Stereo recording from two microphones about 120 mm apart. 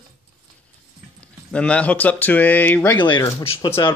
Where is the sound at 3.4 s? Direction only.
50° left (ahead or behind).